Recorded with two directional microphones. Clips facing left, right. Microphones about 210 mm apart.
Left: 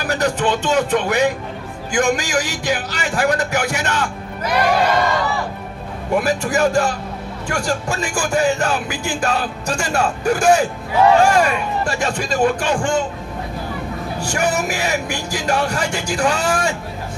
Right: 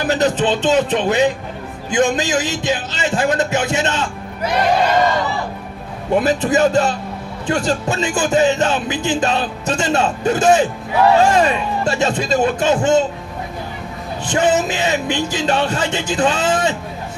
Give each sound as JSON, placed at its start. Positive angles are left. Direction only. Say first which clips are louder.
{"t": 0.0, "sound": "speech", "louder": "right 3 dB", "side_deg": -20}
{"t": 6.1, "sound": "speech", "louder": "right 3 dB", "side_deg": -20}
{"t": 14.2, "sound": "speech", "louder": "right 5 dB", "side_deg": -20}